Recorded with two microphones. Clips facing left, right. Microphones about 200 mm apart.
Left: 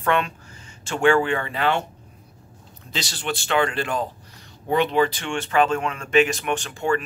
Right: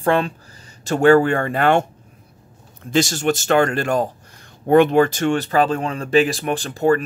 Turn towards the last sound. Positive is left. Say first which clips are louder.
# right 6 dB
turn(degrees=-40)  # may be behind; listen again after turning